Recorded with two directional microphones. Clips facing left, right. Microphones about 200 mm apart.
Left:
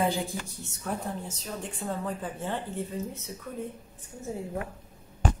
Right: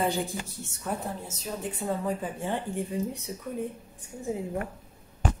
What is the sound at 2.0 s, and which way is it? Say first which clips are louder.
Speech: right 3 dB; 15° right (ahead or behind).